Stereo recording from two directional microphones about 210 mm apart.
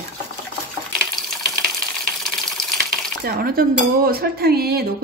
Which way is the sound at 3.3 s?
45° right (ahead or behind).